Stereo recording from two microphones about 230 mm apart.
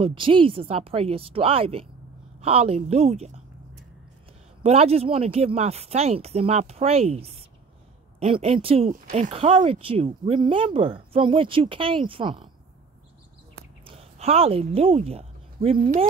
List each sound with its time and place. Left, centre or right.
0.0 s speech: right
4.6 s speech: right
13.9 s a woman's voice: right